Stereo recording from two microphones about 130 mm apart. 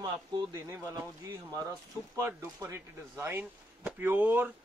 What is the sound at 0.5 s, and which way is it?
Speech, 25° right (ahead or behind).